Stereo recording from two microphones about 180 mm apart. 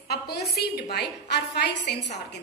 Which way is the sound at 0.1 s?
65° left (ahead or behind).